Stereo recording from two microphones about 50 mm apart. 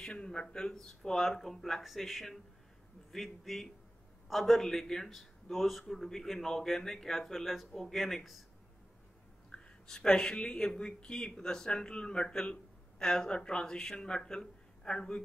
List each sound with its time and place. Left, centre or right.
0.0 s speech: centre
9.5 s speech: centre